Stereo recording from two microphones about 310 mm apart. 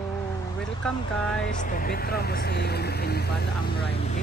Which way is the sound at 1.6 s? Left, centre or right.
Left.